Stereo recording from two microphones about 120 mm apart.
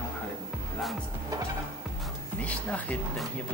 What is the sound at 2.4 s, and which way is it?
Speech, 10° left (ahead or behind).